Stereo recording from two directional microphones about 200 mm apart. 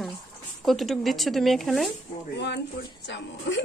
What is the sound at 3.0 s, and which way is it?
Speech, 60° left (ahead or behind).